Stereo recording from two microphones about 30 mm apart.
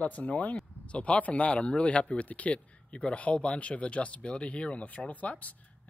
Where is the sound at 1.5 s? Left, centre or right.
Left.